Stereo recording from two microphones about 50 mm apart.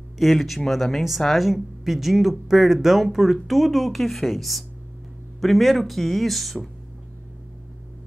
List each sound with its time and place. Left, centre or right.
0.2 s speech: centre